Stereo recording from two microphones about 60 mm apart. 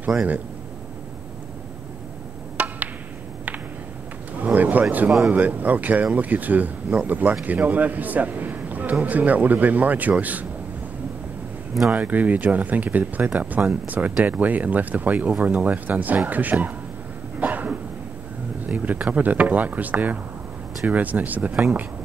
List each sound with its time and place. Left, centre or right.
2.5 s a sound: right
4.4 s a sound: right
5.3 s speech: right
11.9 s speech: right
17.4 s dog: right
18.7 s speech: right